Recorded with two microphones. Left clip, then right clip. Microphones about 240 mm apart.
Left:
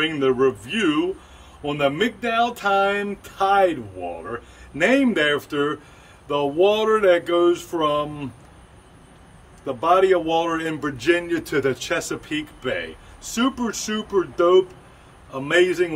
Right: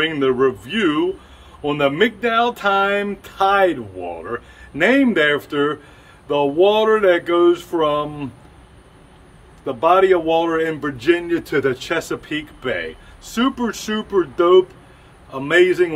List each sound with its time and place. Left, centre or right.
0.0 s a man's voice: centre
9.7 s a man's voice: centre